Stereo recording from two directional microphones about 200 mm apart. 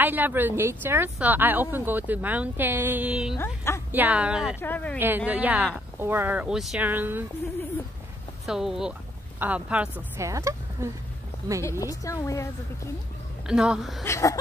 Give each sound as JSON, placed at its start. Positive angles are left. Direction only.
{"t": 0.0, "sound": "a woman's voice", "side_deg": -10}
{"t": 3.3, "sound": "a woman's voice", "side_deg": 15}
{"t": 3.9, "sound": "a woman's voice", "side_deg": -10}
{"t": 4.6, "sound": "a woman's voice", "side_deg": 10}
{"t": 4.9, "sound": "a woman's voice", "side_deg": -10}
{"t": 8.5, "sound": "a woman's voice", "side_deg": 0}
{"t": 11.8, "sound": "a woman's voice", "side_deg": 15}
{"t": 13.5, "sound": "a woman's voice", "side_deg": -5}
{"t": 14.0, "sound": "a woman's voice", "side_deg": 15}